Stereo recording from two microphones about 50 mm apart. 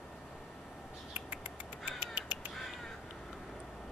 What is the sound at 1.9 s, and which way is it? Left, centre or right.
Crow, right.